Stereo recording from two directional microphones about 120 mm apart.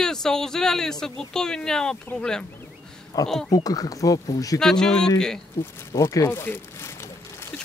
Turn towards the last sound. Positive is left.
turn(degrees=20)  # may be behind; listen again after turning